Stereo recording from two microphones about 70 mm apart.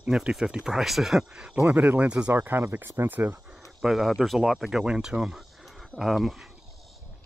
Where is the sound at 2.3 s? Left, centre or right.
Right.